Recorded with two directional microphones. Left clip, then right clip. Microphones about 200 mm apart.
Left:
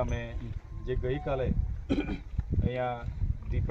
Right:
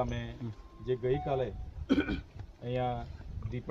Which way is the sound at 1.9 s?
35° right (ahead or behind).